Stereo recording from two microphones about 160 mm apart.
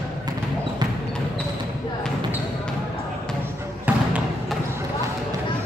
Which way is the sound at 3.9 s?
10° right (ahead or behind).